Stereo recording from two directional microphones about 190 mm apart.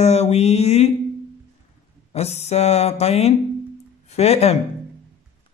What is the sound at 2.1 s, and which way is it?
Speech, 35° left (ahead or behind).